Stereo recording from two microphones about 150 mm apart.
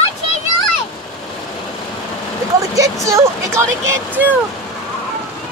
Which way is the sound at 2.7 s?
20° right (ahead or behind).